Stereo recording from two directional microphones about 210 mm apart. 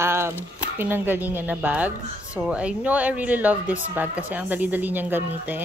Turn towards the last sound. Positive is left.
turn(degrees=-10)  # may be behind; listen again after turning